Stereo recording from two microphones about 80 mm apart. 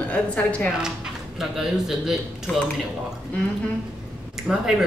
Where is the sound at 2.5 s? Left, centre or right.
Centre.